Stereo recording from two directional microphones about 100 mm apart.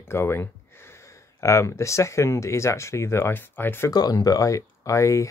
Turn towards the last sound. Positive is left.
turn(degrees=30)  # may be behind; listen again after turning